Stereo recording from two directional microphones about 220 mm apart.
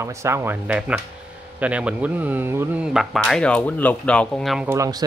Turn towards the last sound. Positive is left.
turn(degrees=-15)  # may be behind; listen again after turning